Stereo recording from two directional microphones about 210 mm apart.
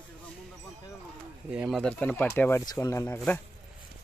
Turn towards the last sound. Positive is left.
turn(degrees=15)  # may be behind; listen again after turning